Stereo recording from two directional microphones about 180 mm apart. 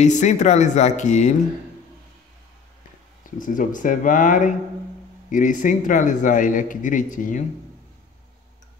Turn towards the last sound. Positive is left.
turn(degrees=45)  # may be behind; listen again after turning